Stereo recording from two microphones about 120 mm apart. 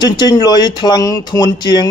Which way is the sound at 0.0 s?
35° left (ahead or behind).